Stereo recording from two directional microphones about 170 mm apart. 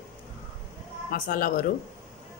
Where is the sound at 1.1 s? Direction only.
55° left (ahead or behind).